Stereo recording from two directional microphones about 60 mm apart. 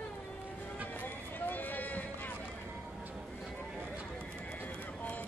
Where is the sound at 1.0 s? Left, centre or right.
Left.